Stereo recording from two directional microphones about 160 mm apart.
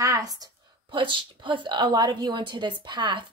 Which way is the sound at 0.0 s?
20° right (ahead or behind).